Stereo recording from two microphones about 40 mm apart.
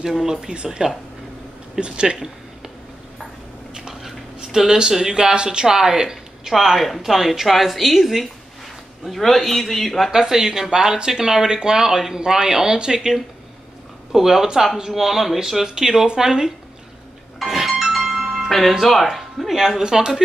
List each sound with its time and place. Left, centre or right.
0.0 s speech: centre
4.4 s speech: centre
6.5 s speech: centre
10.1 s speech: centre
14.1 s speech: centre
17.4 s music: centre
18.5 s speech: centre
19.8 s speech: centre